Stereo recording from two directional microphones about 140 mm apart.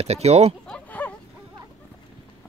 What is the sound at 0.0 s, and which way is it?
Speech, 50° right (ahead or behind).